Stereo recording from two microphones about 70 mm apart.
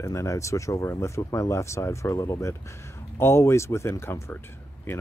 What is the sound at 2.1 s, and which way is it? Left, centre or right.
Speech, left.